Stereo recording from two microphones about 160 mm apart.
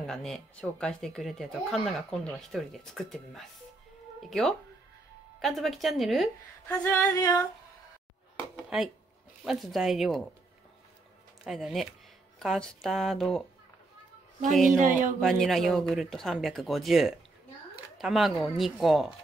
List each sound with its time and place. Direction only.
0.0 s speech: centre (ahead or behind)
6.8 s female singing: 20° left (ahead or behind)
8.6 s a sound: 5° right (ahead or behind)
9.4 s speech: centre (ahead or behind)
11.4 s speech: centre (ahead or behind)
14.8 s speech: 50° right (ahead or behind)
15.1 s speech: centre (ahead or behind)